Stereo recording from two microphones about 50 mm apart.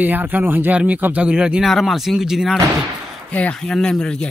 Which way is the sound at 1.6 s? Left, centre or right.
Centre.